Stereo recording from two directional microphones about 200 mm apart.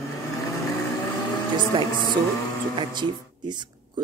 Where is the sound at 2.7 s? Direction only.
20° right (ahead or behind).